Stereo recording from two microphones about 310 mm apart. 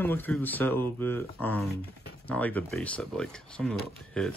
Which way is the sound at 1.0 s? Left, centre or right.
Centre.